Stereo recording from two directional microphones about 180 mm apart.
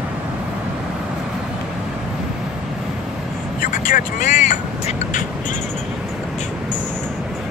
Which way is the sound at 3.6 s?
50° left (ahead or behind).